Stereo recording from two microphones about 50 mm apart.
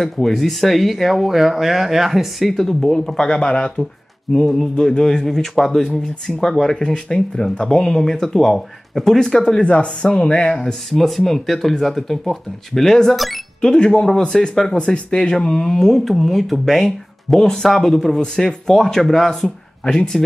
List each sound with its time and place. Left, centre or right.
0.0 s speech: centre
11.0 s speech: centre
13.6 s speech: centre